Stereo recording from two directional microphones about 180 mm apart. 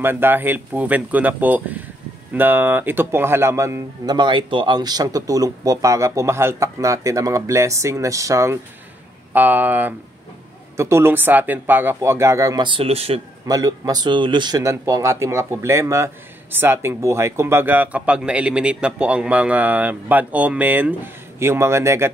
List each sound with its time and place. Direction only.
0.0 s speech: 10° right (ahead or behind); by 13.2 s 35° right (ahead or behind)
13.5 s speech: 20° right (ahead or behind)